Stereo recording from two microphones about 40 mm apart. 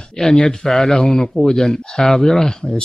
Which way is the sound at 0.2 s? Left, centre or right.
Centre.